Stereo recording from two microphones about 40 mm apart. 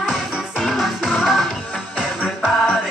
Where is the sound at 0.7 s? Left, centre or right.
Centre.